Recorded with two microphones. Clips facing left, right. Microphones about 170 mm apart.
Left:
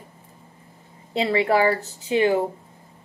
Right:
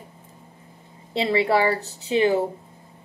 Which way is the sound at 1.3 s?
30° right (ahead or behind).